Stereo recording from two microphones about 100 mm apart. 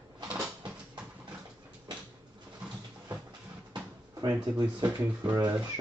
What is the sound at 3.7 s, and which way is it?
Drawer open or close, 40° right (ahead or behind).